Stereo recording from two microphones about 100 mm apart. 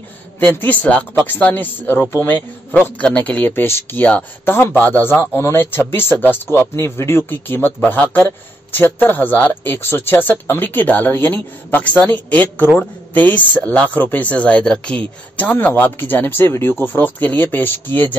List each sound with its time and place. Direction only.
0.4 s speech: 15° left (ahead or behind)